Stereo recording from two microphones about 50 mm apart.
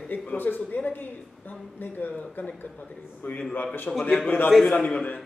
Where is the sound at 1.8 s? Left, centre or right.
Left.